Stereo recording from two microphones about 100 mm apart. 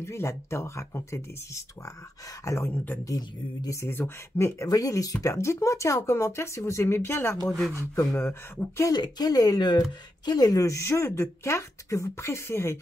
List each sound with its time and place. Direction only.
0.0 s speech: 25° left (ahead or behind)
2.7 s speech: 20° left (ahead or behind)
3.1 s speech: 35° left (ahead or behind)
8.9 s speech: 40° left (ahead or behind); by 12.7 s 25° left (ahead or behind)